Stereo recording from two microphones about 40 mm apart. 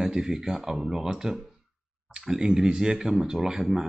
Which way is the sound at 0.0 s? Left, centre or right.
Centre.